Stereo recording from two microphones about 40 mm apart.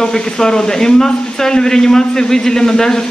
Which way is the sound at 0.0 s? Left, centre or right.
Centre.